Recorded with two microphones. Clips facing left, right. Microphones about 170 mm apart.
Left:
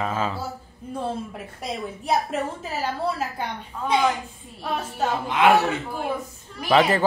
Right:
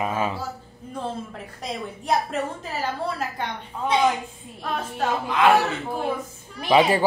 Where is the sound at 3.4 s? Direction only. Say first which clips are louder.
Right 1 dB; 10° left (ahead or behind).